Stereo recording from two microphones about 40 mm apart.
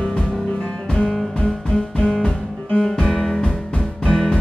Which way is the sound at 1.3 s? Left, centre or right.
Left.